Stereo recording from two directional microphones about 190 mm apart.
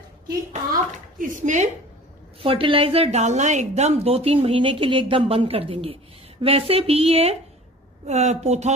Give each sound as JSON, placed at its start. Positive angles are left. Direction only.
{"t": 0.5, "sound": "a child's voice", "side_deg": -40}
{"t": 2.4, "sound": "a woman's voice", "side_deg": -30}